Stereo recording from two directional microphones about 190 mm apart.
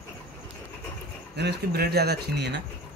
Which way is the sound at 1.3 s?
60° right (ahead or behind).